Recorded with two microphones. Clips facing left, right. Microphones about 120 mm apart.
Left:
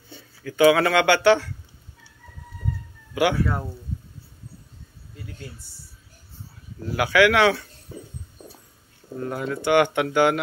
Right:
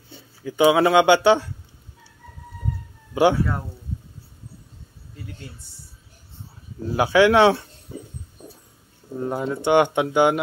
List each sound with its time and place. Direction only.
0.4 s speech: 20° right (ahead or behind)
3.2 s speech: 25° right (ahead or behind)
6.8 s speech: 25° right (ahead or behind)
8.4 s a sound: 15° right (ahead or behind)
9.1 s speech: 20° right (ahead or behind)